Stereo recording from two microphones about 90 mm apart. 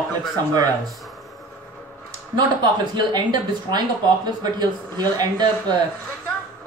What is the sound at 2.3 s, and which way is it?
Speech, 55° right (ahead or behind).